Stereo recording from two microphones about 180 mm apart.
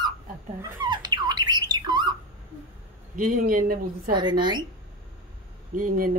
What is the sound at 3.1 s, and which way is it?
Speech, 50° right (ahead or behind).